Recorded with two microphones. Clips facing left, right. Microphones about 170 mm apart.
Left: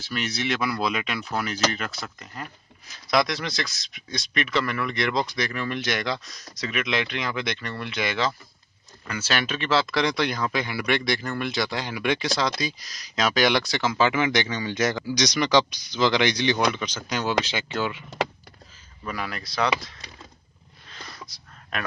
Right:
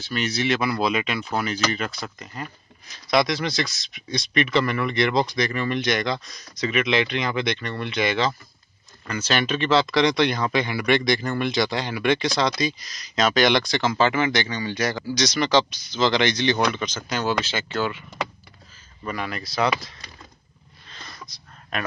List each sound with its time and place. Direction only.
0.0 s speech: centre (ahead or behind)
19.0 s speech: centre (ahead or behind)
20.9 s a sound: 5° left (ahead or behind)